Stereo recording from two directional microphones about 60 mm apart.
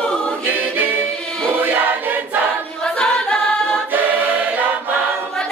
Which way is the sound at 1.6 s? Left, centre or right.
Right.